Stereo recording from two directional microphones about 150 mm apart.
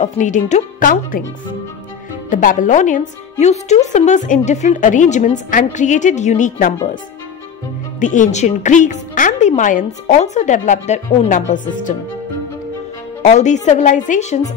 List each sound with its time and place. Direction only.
0.0 s a woman's voice: 50° left (ahead or behind)
2.2 s a woman's voice: 60° left (ahead or behind)
8.0 s a woman's voice: 55° left (ahead or behind)
13.2 s a woman's voice: 50° left (ahead or behind)